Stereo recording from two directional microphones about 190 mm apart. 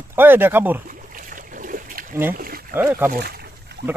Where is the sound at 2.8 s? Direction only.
10° right (ahead or behind).